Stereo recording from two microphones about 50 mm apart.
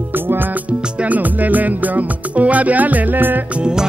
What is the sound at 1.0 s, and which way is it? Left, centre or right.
Music, right.